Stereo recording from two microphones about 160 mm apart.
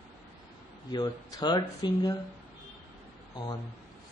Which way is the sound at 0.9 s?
25° left (ahead or behind).